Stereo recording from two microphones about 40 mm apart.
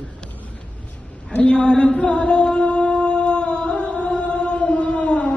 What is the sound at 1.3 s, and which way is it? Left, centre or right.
Music, left.